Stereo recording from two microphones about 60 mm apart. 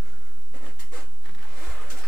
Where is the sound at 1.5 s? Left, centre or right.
Centre.